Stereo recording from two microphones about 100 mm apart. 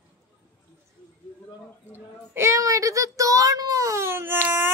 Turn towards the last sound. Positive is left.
turn(degrees=-20)  # may be behind; listen again after turning